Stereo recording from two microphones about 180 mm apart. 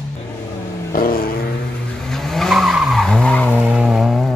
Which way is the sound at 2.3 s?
Centre (ahead or behind).